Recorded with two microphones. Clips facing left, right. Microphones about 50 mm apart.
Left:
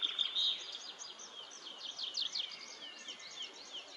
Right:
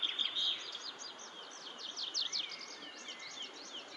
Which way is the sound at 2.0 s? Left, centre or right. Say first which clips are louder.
Right 1 dB; centre.